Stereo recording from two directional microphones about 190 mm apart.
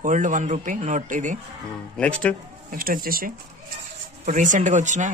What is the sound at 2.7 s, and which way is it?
Speech, 50° right (ahead or behind).